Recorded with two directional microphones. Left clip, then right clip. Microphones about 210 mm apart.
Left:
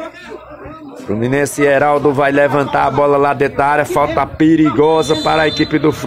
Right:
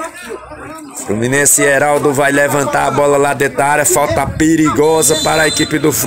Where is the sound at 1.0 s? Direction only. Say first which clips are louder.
Right 3 dB; 5° right (ahead or behind).